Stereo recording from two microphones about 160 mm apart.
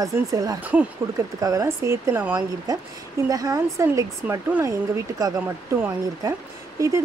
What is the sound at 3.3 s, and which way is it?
Speech, 20° right (ahead or behind).